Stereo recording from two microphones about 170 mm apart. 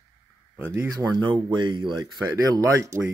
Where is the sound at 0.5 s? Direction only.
15° right (ahead or behind).